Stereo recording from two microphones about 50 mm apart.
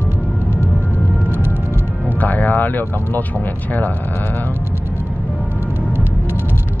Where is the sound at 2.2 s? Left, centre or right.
Left.